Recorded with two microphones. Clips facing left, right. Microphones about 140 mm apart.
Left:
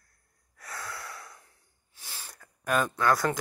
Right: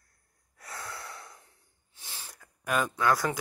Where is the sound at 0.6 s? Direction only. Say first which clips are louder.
Left 1 dB; 25° right (ahead or behind).